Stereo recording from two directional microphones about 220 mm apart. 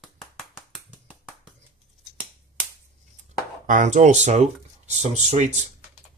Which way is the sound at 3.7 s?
35° right (ahead or behind).